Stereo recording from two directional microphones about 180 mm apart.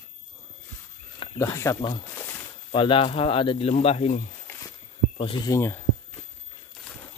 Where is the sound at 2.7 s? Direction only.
30° left (ahead or behind).